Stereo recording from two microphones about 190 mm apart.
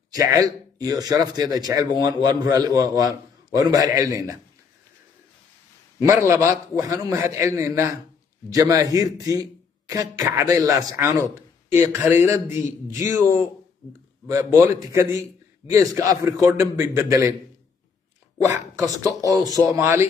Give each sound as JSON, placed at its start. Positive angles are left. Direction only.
{"t": 0.1, "sound": "speech", "side_deg": -20}
{"t": 5.9, "sound": "speech", "side_deg": -15}
{"t": 14.2, "sound": "speech", "side_deg": -15}
{"t": 19.5, "sound": "speech", "side_deg": -15}